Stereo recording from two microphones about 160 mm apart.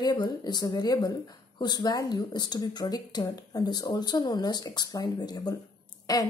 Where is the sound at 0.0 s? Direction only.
25° left (ahead or behind).